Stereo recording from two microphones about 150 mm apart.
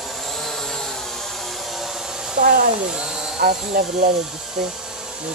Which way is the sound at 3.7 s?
80° right.